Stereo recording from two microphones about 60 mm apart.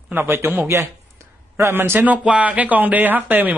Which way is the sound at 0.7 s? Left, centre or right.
Right.